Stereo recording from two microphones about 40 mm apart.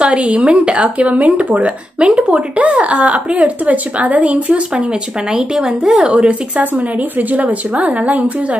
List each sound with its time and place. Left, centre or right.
0.0 s a woman's voice: right
2.0 s speech: right
2.5 s a woman's voice: right
5.3 s speech: centre
7.7 s a woman's voice: right